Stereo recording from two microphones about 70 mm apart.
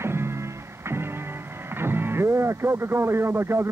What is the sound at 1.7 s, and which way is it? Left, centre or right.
Speech, right.